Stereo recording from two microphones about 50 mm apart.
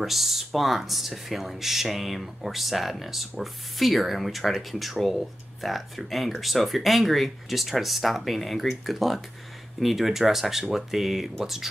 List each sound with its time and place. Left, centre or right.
0.0 s speech: centre